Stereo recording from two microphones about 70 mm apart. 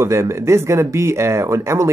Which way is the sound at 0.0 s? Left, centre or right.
Right.